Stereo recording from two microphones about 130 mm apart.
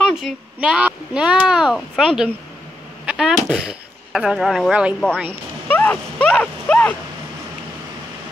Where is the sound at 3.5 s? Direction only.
5° right (ahead or behind).